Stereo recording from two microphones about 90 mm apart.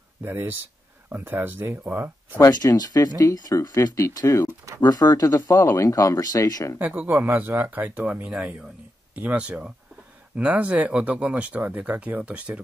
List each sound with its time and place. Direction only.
0.2 s speech: 20° right (ahead or behind)
2.5 s speech: 45° left (ahead or behind)
4.8 s speech: 50° left (ahead or behind)
6.8 s speech: 20° right (ahead or behind)